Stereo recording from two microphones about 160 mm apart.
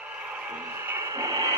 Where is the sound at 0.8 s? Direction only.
15° right (ahead or behind).